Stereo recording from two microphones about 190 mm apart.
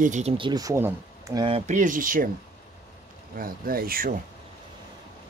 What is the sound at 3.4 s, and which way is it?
Speech, 50° right (ahead or behind).